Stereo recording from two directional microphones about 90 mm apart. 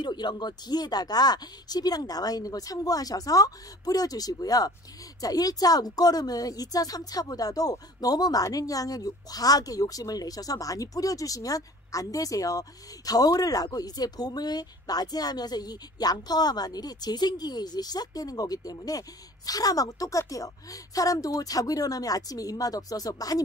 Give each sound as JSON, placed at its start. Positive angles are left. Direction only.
{"t": 0.0, "sound": "speech", "side_deg": 55}